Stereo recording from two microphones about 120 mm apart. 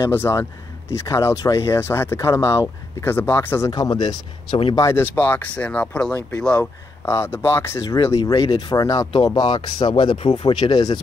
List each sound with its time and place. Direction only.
0.0 s speech: 20° left (ahead or behind)
3.7 s speech: 35° left (ahead or behind)
4.7 s speech: 20° left (ahead or behind)
7.1 s speech: 20° left (ahead or behind)